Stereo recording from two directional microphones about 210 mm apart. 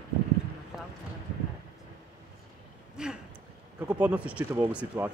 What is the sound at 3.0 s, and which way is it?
Speech, 5° right (ahead or behind).